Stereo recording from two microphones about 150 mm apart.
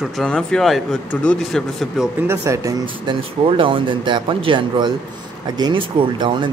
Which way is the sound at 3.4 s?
35° right (ahead or behind).